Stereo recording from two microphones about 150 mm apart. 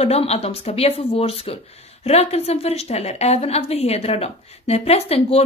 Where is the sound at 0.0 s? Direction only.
45° left (ahead or behind).